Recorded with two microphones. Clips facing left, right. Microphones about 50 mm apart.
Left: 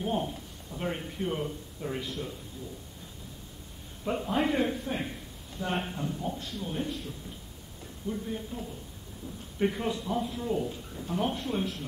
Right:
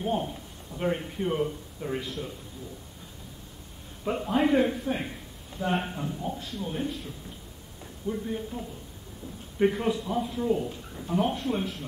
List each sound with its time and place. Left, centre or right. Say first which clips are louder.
0.0 s a man's voice: right 2 dB; centre
4.0 s a man's voice: right 3 dB; centre
8.1 s a man's voice: right 3 dB; centre